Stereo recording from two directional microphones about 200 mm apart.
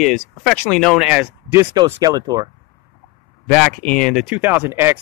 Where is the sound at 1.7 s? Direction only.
20° right (ahead or behind).